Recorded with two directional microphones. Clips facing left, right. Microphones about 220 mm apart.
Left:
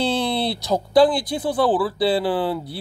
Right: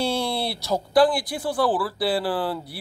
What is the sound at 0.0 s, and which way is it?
Speech, 20° left (ahead or behind).